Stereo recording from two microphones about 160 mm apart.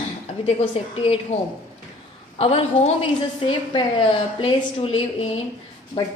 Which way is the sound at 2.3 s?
35° left (ahead or behind).